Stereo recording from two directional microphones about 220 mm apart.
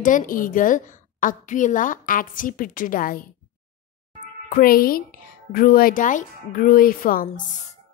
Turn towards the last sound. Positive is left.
turn(degrees=40)  # may be behind; listen again after turning